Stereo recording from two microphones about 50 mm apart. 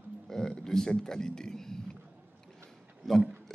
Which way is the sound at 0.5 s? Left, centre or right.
Centre.